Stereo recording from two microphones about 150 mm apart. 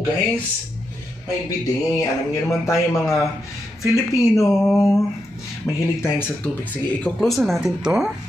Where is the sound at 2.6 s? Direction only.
20° left (ahead or behind).